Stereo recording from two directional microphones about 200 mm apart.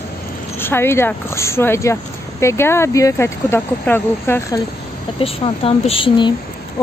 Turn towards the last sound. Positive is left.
turn(degrees=25)  # may be behind; listen again after turning